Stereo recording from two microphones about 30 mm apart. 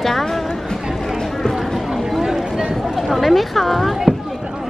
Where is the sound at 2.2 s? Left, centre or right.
Centre.